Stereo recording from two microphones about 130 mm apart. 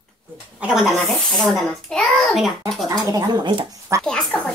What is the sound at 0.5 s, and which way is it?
A child's voice, 5° right (ahead or behind).